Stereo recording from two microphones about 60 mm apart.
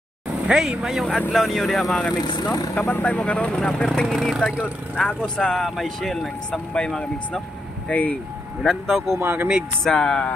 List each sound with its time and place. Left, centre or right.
0.5 s speech: centre
2.4 s speech: left
3.2 s speech: centre
4.1 s speech: centre
7.9 s speech: left
8.6 s speech: centre
9.2 s speech: right
9.8 s speech: centre